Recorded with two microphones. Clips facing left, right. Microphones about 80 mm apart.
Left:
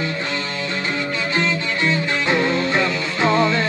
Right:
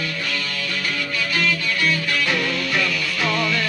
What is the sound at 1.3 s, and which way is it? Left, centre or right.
Music, left.